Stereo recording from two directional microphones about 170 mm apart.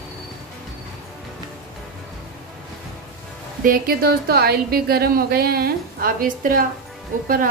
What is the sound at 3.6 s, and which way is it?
A woman's voice, 60° right (ahead or behind).